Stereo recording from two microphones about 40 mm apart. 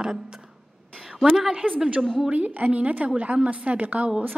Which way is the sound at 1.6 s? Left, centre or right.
Right.